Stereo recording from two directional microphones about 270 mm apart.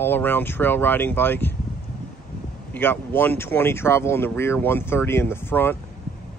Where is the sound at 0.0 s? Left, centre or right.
Centre.